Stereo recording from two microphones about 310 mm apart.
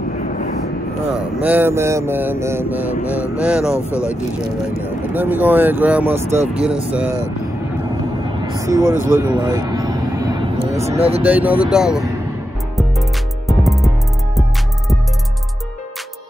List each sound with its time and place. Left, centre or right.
0.2 s vehicle: left
1.1 s mantra: centre
3.7 s speech: centre
4.8 s mantra: centre
8.3 s music: centre
10.7 s speech: centre
11.2 s mantra: centre
13.5 s music: centre